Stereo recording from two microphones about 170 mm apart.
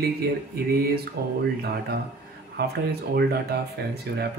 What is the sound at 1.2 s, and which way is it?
Speech, 70° right (ahead or behind).